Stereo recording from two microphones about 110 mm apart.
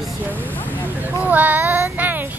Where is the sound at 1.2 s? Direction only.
15° right (ahead or behind).